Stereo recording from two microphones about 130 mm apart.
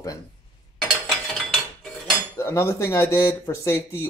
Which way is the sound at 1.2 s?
5° left (ahead or behind).